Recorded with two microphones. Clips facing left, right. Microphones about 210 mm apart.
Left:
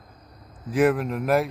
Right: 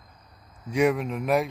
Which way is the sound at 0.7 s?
Centre (ahead or behind).